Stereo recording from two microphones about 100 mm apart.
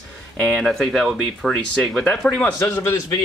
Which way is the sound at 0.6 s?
Centre (ahead or behind).